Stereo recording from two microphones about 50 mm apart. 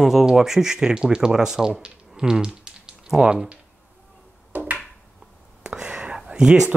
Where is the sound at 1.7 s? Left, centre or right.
Centre.